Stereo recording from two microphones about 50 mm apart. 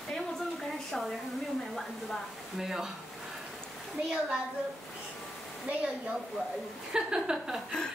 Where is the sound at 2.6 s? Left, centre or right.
Centre.